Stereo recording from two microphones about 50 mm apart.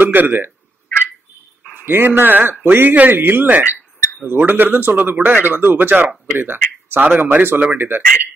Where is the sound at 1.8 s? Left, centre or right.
Right.